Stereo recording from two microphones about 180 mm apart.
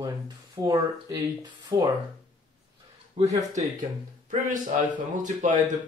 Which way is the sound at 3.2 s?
35° right (ahead or behind).